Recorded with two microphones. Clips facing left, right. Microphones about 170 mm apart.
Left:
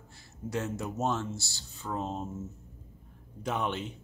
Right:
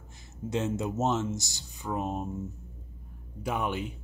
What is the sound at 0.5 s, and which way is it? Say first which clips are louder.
Speech: right 4 dB; 25° right (ahead or behind).